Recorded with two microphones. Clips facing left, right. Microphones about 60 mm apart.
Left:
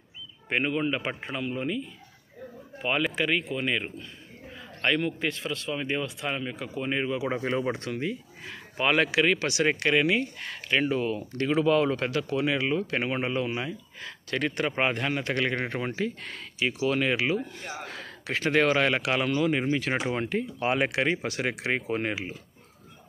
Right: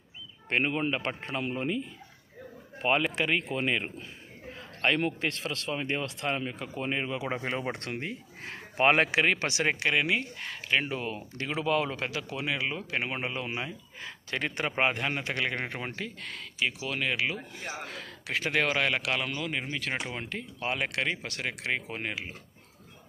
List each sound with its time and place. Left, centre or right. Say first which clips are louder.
0.7 s speech: left 2 dB; centre
1.0 s speech: left 1 dB; centre
1.4 s speech: left 1 dB; centre
4.6 s a sound: left 1 dB; centre
5.2 s speech: left 2 dB; centre; by 9.7 s right
9.7 s speech: left 3 dB; centre
15.9 s speech: left 7 dB; centre